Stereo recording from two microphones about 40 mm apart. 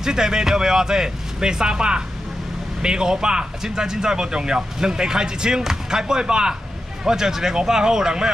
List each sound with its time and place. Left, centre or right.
0.0 s speech: centre